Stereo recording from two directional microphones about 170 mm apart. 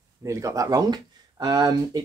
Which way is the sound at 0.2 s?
15° right (ahead or behind).